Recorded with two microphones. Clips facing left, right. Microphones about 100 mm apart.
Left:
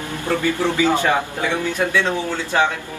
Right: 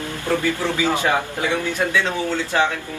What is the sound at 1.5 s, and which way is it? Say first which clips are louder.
Speech: left 1 dB; 20° left (ahead or behind).